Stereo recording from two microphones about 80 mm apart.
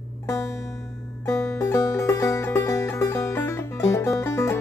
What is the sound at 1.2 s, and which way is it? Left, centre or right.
Music, left.